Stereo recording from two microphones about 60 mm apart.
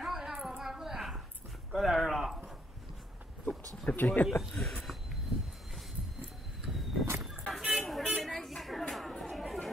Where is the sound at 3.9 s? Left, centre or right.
Left.